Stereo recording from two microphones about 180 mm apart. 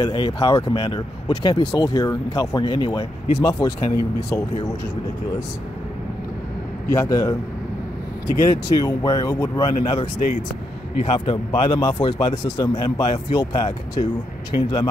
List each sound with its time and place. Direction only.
0.0 s speech: 20° left (ahead or behind)
6.9 s speech: 20° left (ahead or behind)
11.0 s speech: 30° left (ahead or behind)